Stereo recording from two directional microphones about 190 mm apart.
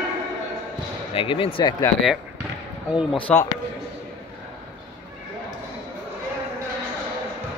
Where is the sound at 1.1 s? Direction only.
30° left (ahead or behind).